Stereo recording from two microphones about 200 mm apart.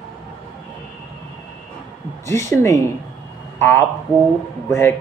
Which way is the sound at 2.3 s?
15° left (ahead or behind).